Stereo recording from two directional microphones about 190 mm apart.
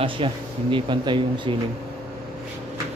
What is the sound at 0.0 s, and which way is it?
Speech, 25° right (ahead or behind).